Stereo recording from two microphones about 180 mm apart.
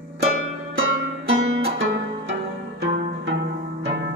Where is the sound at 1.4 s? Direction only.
90° right.